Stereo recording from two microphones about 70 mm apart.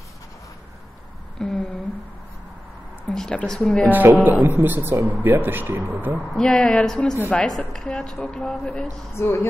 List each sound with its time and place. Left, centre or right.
1.4 s a sound: centre
3.1 s speech: centre
3.9 s a man's voice: right
6.3 s speech: centre
9.1 s speech: left